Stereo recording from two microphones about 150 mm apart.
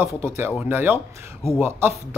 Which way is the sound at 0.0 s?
15° right (ahead or behind).